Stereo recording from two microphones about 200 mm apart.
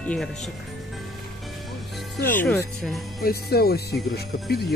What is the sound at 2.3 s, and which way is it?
Speech, 10° left (ahead or behind).